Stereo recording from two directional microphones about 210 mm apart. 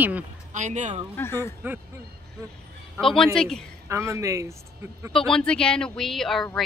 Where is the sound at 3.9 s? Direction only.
15° right (ahead or behind).